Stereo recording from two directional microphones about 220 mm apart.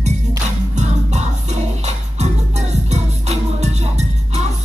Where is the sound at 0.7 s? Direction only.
30° right (ahead or behind).